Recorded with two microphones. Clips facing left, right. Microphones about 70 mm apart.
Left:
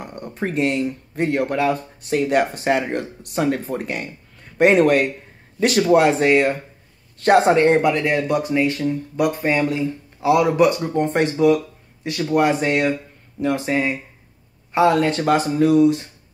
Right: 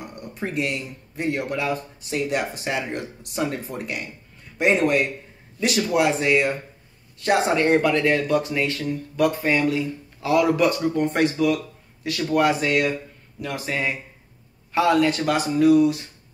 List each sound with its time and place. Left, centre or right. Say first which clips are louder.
0.0 s speech: left 4 dB; left
4.6 s speech: left 5 dB; left
5.9 s speech: left 3 dB; left